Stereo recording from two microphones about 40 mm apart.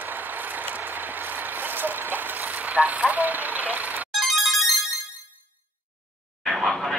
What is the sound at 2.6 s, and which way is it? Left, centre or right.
Vehicle, right.